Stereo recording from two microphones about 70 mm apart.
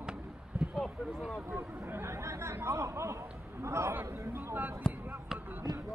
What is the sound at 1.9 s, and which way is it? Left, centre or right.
Speech, right.